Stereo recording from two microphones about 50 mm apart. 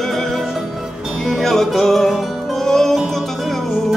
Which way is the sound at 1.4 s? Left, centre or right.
Centre.